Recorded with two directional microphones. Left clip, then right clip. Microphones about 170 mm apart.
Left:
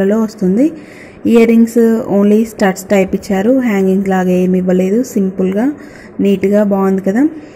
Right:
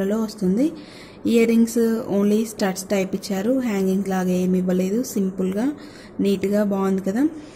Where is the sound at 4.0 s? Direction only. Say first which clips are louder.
Left 10 dB; 20° left (ahead or behind).